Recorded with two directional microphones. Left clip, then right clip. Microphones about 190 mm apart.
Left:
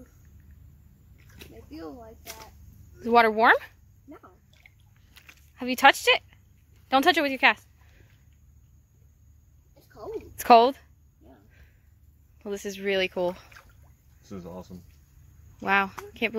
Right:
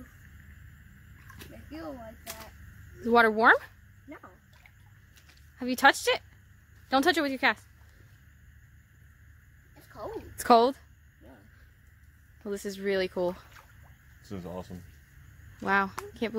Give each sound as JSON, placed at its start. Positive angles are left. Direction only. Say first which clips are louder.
{"t": 1.2, "sound": "a sound", "louder": "left 1 dB", "side_deg": 10}
{"t": 3.0, "sound": "speech", "louder": "left 3 dB", "side_deg": 0}
{"t": 5.6, "sound": "speech", "louder": "left 4 dB", "side_deg": 0}
{"t": 9.9, "sound": "a sound", "louder": "left 2 dB", "side_deg": 0}
{"t": 12.4, "sound": "speech", "louder": "left 2 dB", "side_deg": 0}
{"t": 14.2, "sound": "speech", "louder": "right 1 dB", "side_deg": -30}
{"t": 15.6, "sound": "speech", "louder": "left 3 dB", "side_deg": 0}